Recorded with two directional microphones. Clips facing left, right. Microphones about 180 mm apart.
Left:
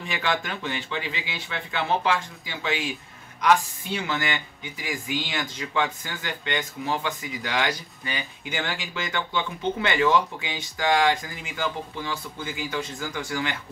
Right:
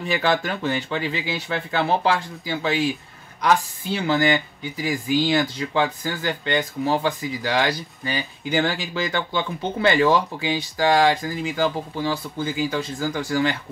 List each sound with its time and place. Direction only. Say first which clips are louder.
0.0 s speech: right 6 dB; 35° right (ahead or behind)